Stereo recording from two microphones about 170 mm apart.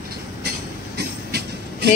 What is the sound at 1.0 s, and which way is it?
Train, 70° right (ahead or behind).